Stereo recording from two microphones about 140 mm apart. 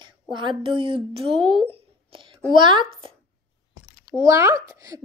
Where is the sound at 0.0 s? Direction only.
35° right (ahead or behind).